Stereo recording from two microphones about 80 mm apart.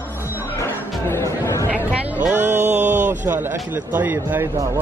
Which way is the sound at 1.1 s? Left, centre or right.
Left.